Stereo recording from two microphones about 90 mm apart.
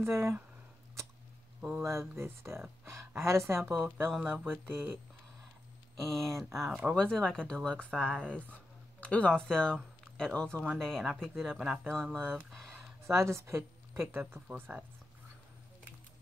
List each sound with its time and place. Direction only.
0.0 s speech: 30° right (ahead or behind)
1.8 s speech: 30° right (ahead or behind)
5.9 s speech: 5° left (ahead or behind)
11.6 s speech: 15° right (ahead or behind)
11.9 s speech: 5° left (ahead or behind)
12.4 s a sound: 5° left (ahead or behind)
13.0 s a woman's voice: 30° right (ahead or behind)